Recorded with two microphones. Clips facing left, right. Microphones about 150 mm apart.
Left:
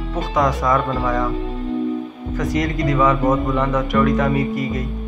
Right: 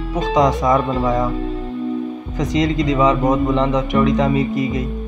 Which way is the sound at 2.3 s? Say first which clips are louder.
Right 3 dB; 20° right (ahead or behind).